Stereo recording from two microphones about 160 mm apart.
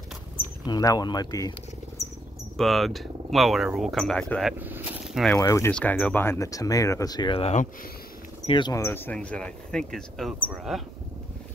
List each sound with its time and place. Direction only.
0.7 s speech: 25° left (ahead or behind)
2.5 s speech: centre (ahead or behind)
4.6 s a sound: 10° right (ahead or behind)
5.4 s speech: 20° left (ahead or behind)
5.7 s speech: 5° left (ahead or behind); by 7.6 s 40° left (ahead or behind)
8.5 s speech: 30° left (ahead or behind)
8.8 s speech: 15° left (ahead or behind)